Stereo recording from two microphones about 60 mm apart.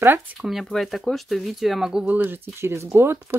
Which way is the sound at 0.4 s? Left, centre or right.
Centre.